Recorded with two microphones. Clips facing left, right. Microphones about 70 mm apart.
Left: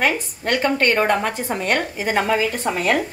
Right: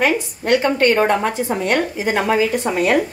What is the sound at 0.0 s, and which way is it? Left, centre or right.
Speech, left.